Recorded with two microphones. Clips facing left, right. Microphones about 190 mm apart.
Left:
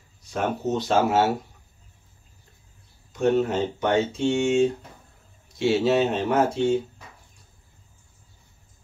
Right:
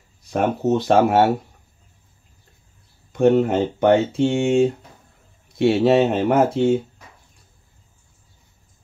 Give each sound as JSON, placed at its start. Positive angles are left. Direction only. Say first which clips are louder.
{"t": 0.3, "sound": "speech", "louder": "right 6 dB", "side_deg": -60}
{"t": 3.1, "sound": "speech", "louder": "right 6 dB", "side_deg": -60}